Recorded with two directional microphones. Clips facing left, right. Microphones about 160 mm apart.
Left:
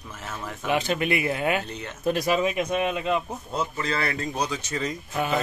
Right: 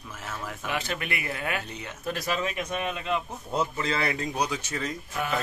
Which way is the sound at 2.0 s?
15° left (ahead or behind).